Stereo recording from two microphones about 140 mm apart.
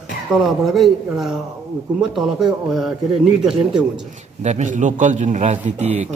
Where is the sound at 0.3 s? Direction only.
Centre (ahead or behind).